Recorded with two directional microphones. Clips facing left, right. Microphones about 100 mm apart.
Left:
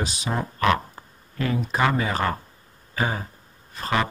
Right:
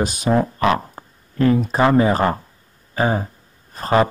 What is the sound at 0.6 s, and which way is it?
Speech, 35° right (ahead or behind).